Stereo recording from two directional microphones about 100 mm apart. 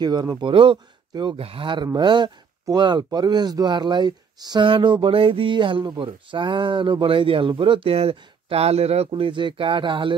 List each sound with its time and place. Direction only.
0.0 s speech: 45° right (ahead or behind)
1.4 s speech: 65° right (ahead or behind); by 4.6 s 45° right (ahead or behind)
4.6 s speech: 55° right (ahead or behind)